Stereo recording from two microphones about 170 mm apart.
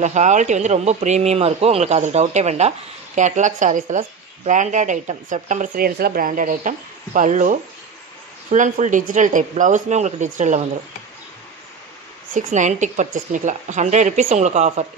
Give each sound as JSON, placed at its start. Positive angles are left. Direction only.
{"t": 0.0, "sound": "a man's voice", "side_deg": -45}
{"t": 12.4, "sound": "speech", "side_deg": -45}